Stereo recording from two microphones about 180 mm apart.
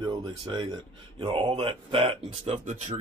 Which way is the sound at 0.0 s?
25° right (ahead or behind).